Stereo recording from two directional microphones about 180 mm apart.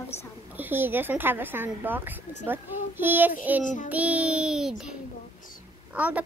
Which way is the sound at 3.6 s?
45° left (ahead or behind).